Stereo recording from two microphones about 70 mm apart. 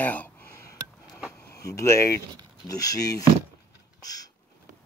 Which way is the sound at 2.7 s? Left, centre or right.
Left.